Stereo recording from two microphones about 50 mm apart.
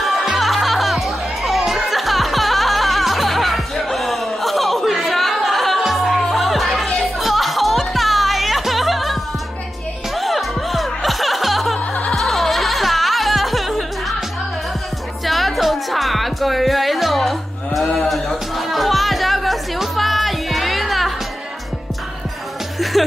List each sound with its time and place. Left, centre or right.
0.0 s music: centre
11.8 s music: left
12.2 s music: centre
15.2 s music: centre